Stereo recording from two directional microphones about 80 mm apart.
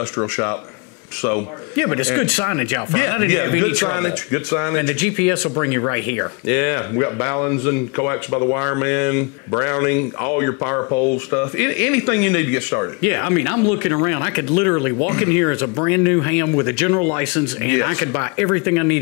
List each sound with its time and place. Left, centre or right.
1.2 s a man's voice: left